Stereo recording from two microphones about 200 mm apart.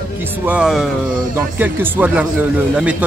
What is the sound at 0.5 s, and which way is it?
Speech, 5° right (ahead or behind).